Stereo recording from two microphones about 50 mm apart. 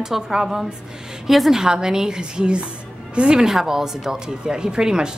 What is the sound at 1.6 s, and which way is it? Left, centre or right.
Speech, centre.